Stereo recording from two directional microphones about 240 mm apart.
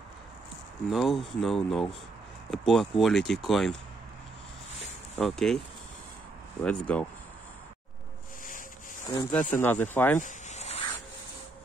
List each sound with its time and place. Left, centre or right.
0.8 s speech: centre
5.2 s speech: centre
6.6 s speech: centre
9.0 s speech: centre
9.3 s speech: centre
10.2 s a sound: left